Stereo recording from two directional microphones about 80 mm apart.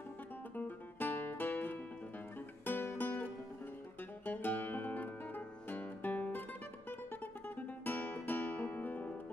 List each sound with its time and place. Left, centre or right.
0.6 s music: left